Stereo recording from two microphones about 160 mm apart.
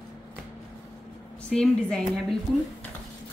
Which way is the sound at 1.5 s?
5° left (ahead or behind).